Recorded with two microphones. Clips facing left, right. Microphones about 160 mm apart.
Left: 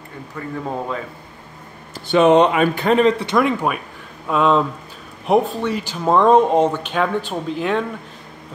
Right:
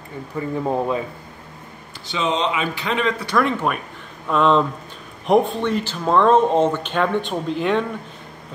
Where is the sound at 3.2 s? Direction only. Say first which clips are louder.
Left 2 dB; 20° left (ahead or behind); by 7.8 s centre (ahead or behind).